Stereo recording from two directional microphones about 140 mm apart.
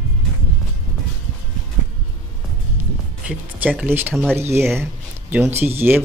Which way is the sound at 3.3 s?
10° right (ahead or behind).